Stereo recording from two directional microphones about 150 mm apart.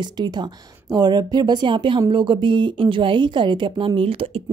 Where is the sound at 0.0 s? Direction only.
30° right (ahead or behind).